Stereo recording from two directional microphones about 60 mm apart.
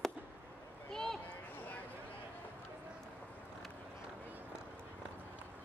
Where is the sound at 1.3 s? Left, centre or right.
Left.